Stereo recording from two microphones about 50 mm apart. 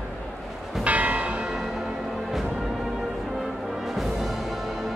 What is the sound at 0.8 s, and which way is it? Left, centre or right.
Church bell, right.